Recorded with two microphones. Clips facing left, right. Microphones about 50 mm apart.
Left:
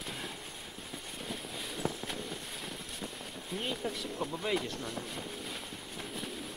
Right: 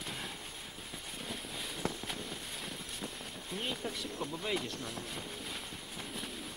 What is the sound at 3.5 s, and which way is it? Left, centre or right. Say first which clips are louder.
Vehicle: left 2 dB; centre.